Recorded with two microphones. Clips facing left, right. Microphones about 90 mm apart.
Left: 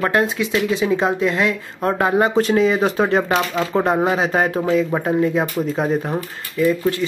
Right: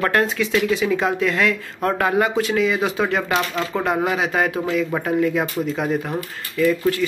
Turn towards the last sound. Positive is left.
turn(degrees=25)  # may be behind; listen again after turning